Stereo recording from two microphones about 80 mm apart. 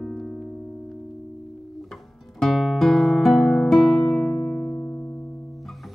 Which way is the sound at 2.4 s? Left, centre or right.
Centre.